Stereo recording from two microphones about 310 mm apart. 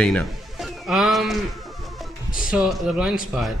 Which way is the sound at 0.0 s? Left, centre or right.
Centre.